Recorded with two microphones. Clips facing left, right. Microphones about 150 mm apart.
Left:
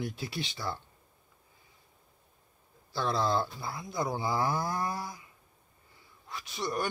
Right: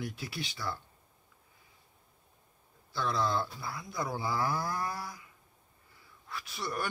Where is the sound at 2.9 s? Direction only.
30° left (ahead or behind).